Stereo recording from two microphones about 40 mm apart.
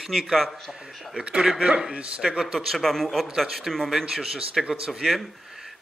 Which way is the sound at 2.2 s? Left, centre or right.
Centre.